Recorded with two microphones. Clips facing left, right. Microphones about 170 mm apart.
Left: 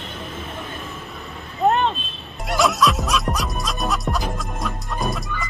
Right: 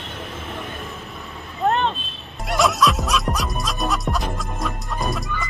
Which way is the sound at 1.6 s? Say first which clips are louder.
Left 2 dB; 5° left (ahead or behind).